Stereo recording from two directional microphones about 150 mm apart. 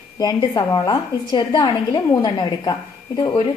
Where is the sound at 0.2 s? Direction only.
25° left (ahead or behind).